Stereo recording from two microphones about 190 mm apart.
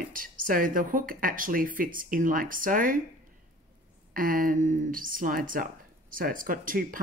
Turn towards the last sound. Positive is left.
turn(degrees=-45)  # may be behind; listen again after turning